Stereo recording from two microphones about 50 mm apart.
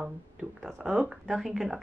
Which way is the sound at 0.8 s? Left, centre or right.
Centre.